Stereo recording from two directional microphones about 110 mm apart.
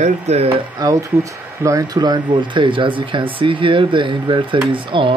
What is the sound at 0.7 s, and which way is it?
Speech, 30° right (ahead or behind).